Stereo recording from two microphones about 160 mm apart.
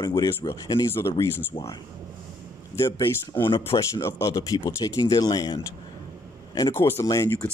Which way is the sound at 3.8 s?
15° left (ahead or behind).